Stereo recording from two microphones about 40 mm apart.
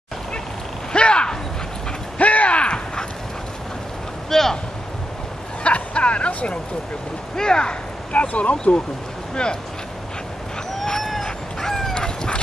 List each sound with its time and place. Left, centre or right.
0.9 s a sound: left
2.1 s a sound: left
4.3 s vehicle: centre
5.6 s a sound: left
7.3 s speech: centre
8.1 s speech: left
9.3 s speech: left
11.2 s dog: centre
11.9 s chicken: centre